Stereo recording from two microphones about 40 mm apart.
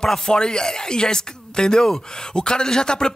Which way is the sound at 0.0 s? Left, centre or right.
Centre.